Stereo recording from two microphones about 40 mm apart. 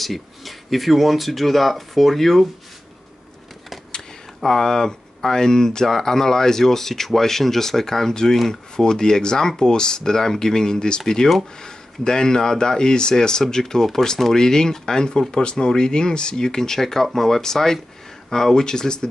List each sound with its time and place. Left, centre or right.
0.0 s speech: centre
4.4 s speech: centre